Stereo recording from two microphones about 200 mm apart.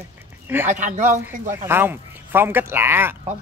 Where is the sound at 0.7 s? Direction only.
40° right (ahead or behind).